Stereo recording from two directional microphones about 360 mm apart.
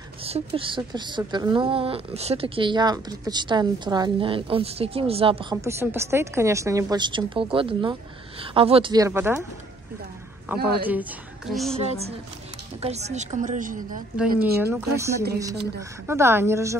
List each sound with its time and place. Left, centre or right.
0.2 s speech: centre
10.5 s a woman's voice: centre
11.7 s a woman's voice: centre
14.1 s a woman's voice: centre